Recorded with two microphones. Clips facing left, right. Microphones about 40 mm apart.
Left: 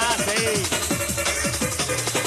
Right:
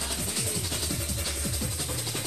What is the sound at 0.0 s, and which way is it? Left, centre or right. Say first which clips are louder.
Music: left 13 dB; left.